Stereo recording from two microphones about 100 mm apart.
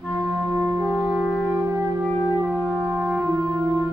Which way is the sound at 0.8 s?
5° left (ahead or behind).